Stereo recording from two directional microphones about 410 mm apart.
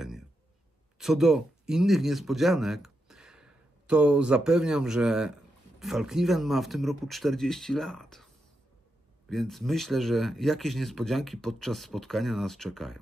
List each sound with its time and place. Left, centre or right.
0.9 s speech: centre
9.3 s speech: centre